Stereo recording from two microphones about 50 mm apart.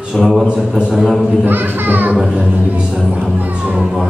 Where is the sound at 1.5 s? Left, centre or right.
Right.